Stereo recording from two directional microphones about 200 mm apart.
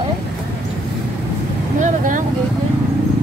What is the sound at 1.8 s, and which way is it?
Speech, 40° right (ahead or behind).